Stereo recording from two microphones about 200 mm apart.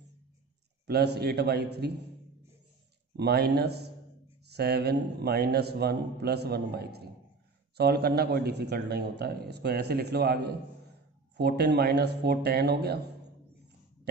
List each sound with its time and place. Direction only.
0.8 s a man's voice: 55° right (ahead or behind)
3.2 s a man's voice: 55° right (ahead or behind)